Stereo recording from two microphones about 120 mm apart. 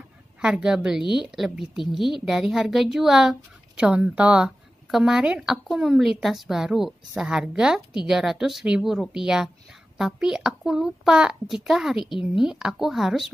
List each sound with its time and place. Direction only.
0.4 s a woman's voice: 5° right (ahead or behind)